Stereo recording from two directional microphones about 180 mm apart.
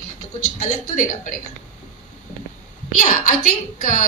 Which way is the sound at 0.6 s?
45° left (ahead or behind).